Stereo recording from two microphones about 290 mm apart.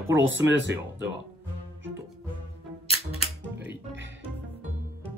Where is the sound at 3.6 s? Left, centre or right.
Right.